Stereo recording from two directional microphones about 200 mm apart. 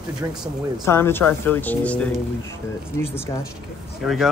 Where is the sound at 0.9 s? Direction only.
10° left (ahead or behind).